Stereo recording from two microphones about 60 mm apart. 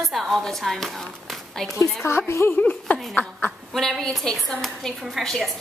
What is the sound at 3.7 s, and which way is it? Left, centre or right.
A woman's voice, centre.